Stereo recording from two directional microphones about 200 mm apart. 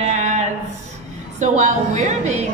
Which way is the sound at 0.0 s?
35° right (ahead or behind).